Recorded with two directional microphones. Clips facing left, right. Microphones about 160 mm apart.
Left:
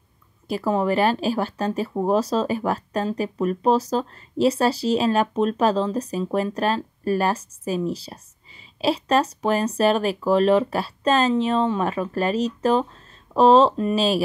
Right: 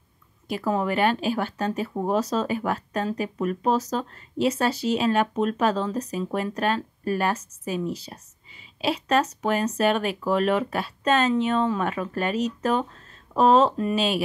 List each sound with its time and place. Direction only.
0.5 s speech: 30° left (ahead or behind)